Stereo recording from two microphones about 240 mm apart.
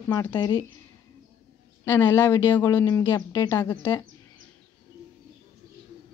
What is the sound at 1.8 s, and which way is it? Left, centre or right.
Speech, centre.